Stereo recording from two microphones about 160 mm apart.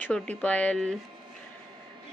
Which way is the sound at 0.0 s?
10° left (ahead or behind).